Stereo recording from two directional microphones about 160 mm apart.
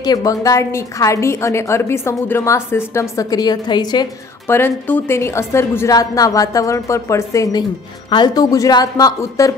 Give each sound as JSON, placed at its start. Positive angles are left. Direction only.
{"t": 0.0, "sound": "a woman's voice", "side_deg": 25}
{"t": 4.5, "sound": "a woman's voice", "side_deg": 15}